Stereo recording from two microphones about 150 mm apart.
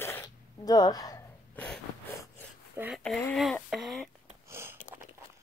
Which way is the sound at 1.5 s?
10° left (ahead or behind).